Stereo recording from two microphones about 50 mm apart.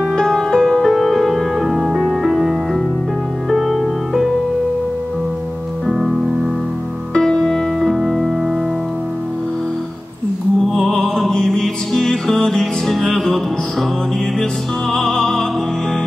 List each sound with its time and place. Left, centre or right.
0.1 s music: centre
5.9 s music: centre
7.2 s music: centre
10.7 s music: centre
14.9 s music: centre